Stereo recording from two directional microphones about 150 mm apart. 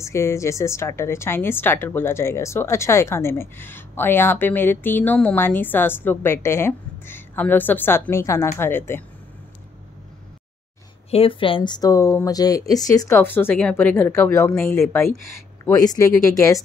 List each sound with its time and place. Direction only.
0.0 s a woman's voice: 20° left (ahead or behind)
11.1 s speech: 40° left (ahead or behind); by 14.5 s 15° left (ahead or behind)
14.5 s speech: 5° left (ahead or behind)
14.8 s a woman's voice: 15° left (ahead or behind)